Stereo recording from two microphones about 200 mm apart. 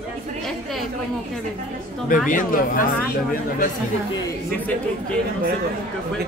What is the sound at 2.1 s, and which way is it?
Speech, 40° left (ahead or behind).